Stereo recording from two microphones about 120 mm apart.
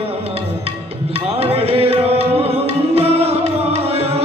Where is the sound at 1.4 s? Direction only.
55° right (ahead or behind).